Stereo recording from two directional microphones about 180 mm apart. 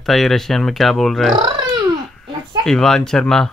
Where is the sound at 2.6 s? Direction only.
5° left (ahead or behind).